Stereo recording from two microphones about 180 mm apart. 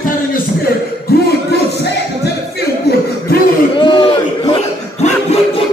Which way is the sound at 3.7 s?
25° left (ahead or behind).